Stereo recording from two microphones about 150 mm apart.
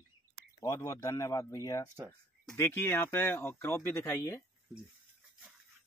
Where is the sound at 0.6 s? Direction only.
20° left (ahead or behind).